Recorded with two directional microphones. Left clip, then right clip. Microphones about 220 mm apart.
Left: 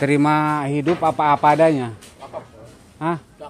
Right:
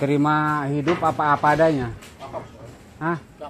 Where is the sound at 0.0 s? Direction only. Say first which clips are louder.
Left 3 dB; 30° left (ahead or behind).